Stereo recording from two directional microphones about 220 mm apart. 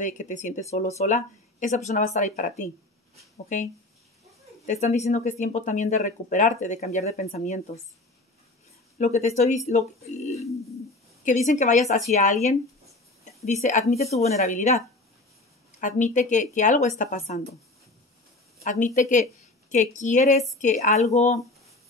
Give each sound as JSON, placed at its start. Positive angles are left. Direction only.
{"t": 0.0, "sound": "speech", "side_deg": 35}
{"t": 4.6, "sound": "speech", "side_deg": 30}
{"t": 8.9, "sound": "speech", "side_deg": 35}
{"t": 15.8, "sound": "speech", "side_deg": 35}
{"t": 18.6, "sound": "speech", "side_deg": 35}